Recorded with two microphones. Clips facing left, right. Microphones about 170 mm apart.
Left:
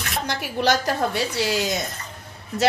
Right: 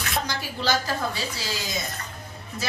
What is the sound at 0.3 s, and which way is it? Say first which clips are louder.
A woman's voice: left 7 dB; 65° left (ahead or behind).